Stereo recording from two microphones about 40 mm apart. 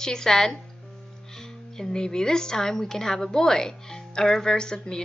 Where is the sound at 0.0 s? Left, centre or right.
Centre.